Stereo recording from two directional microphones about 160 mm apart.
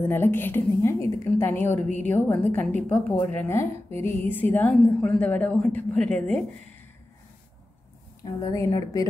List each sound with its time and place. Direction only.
0.1 s a woman's voice: 15° left (ahead or behind)
8.2 s a woman's voice: 20° left (ahead or behind)